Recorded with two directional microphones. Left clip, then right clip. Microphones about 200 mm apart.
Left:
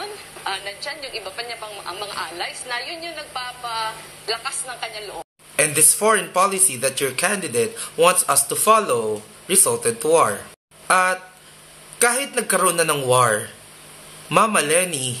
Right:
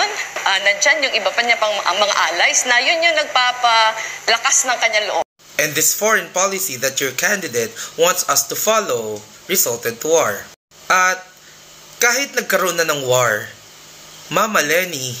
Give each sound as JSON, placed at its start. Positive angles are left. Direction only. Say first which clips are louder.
{"t": 0.0, "sound": "a woman's voice", "louder": "right 12 dB", "side_deg": -45}
{"t": 5.6, "sound": "speech", "louder": "right 2 dB", "side_deg": 5}